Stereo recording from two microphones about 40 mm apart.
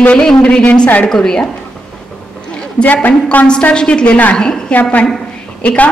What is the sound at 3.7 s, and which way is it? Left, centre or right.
Speech, left.